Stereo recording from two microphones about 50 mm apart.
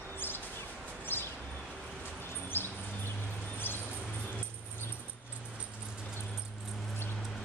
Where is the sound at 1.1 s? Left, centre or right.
Left.